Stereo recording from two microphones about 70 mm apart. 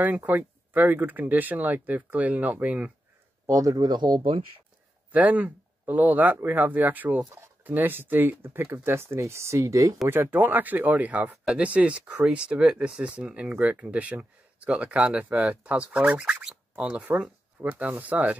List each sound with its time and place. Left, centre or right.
0.0 s speech: right
3.4 s speech: right
3.7 s speech: right
5.1 s speech: right
10.0 s speech: right; by 17.3 s centre
17.6 s speech: right